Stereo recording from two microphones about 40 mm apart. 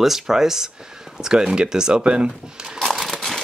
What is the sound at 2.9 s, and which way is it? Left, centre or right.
Crumpling, centre.